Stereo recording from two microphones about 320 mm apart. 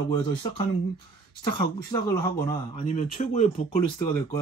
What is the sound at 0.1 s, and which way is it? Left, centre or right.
Speech, centre.